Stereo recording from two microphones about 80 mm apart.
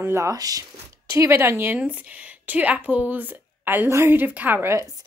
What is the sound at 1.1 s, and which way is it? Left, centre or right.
Speech, right.